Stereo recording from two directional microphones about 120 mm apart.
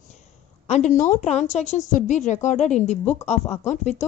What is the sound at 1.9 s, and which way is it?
A woman's voice, 85° left.